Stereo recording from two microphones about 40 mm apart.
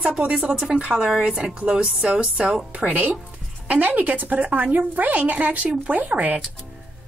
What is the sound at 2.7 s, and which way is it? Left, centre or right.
Speech, right.